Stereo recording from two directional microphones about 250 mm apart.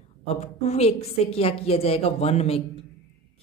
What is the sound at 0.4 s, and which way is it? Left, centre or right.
Speech, left.